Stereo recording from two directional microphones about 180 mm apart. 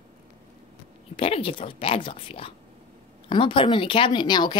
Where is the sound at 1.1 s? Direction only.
30° left (ahead or behind).